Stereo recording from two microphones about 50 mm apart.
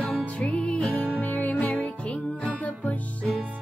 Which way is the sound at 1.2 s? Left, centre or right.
Left.